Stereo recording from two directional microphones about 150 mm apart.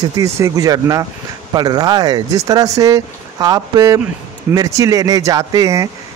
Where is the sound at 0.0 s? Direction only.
25° right (ahead or behind).